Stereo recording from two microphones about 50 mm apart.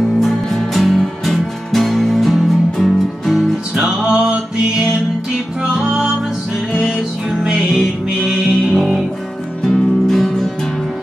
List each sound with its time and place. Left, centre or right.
0.2 s music: centre
3.7 s music: centre
5.6 s music: centre
7.5 s music: centre